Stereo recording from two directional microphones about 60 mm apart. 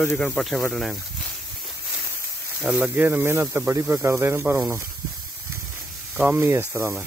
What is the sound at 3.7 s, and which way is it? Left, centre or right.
Speech, right.